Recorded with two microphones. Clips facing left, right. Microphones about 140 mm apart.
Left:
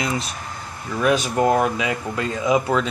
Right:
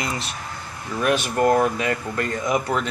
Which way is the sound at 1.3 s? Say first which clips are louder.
Even; 15° left (ahead or behind).